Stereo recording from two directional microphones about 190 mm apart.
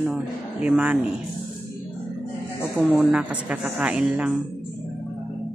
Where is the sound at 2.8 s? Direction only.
Centre (ahead or behind).